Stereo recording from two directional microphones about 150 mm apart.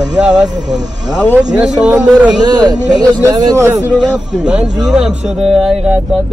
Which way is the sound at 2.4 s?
30° right (ahead or behind).